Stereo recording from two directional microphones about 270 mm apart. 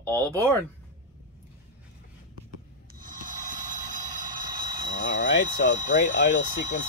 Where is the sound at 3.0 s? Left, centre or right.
Right.